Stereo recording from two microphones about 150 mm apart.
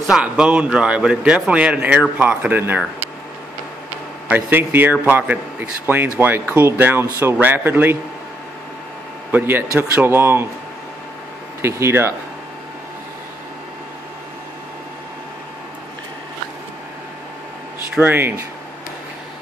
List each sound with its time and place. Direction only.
0.0 s a man's voice: 5° right (ahead or behind)
4.3 s a man's voice: 15° right (ahead or behind)
9.3 s a man's voice: 15° right (ahead or behind)
11.6 s a man's voice: 15° right (ahead or behind)
17.9 s a man's voice: 15° right (ahead or behind)